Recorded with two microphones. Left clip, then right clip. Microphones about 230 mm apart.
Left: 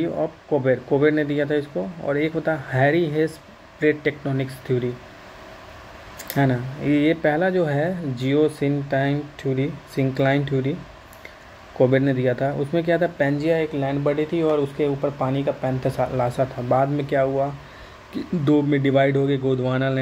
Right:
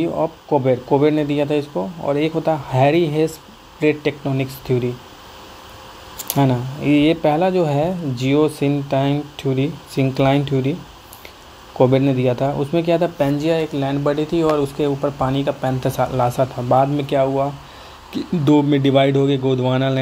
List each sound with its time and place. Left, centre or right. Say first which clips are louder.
0.0 s speech: right 4 dB; centre
6.3 s speech: right 3 dB; centre
11.8 s speech: right 3 dB; centre